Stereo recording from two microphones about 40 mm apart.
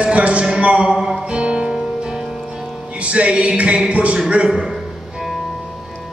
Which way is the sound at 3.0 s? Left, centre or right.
Right.